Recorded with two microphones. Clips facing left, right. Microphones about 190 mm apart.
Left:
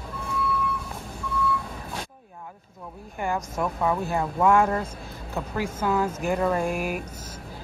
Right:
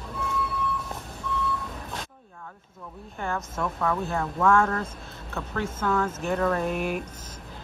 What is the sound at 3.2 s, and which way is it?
Speech, 15° left (ahead or behind).